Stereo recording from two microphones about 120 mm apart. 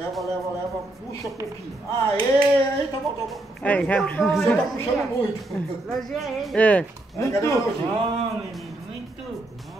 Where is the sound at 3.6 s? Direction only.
10° left (ahead or behind).